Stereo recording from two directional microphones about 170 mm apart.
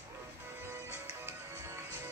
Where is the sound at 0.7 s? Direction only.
15° right (ahead or behind).